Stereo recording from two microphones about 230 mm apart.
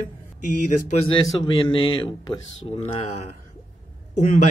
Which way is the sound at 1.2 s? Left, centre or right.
Left.